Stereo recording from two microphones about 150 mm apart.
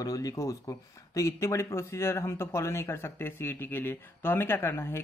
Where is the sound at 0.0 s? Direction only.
25° left (ahead or behind).